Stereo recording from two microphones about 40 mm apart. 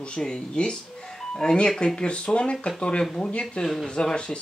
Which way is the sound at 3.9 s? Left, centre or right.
Left.